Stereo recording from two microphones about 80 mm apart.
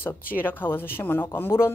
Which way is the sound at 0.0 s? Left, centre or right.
Left.